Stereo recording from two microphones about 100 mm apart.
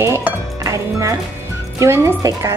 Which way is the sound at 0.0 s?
25° right (ahead or behind).